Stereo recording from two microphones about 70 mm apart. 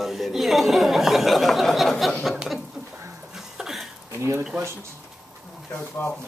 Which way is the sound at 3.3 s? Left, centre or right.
Centre.